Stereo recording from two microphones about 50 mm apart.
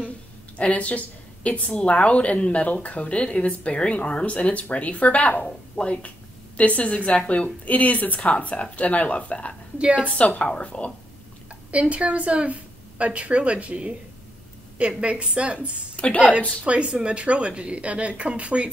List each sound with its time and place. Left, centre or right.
0.6 s a woman's voice: left
9.8 s speech: right
10.0 s a woman's voice: left
11.7 s speech: right